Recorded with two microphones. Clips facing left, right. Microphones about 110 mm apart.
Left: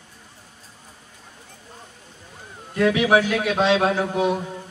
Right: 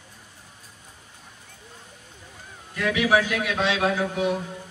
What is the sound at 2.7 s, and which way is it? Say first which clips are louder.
A man's voice: left 4 dB; 30° left (ahead or behind).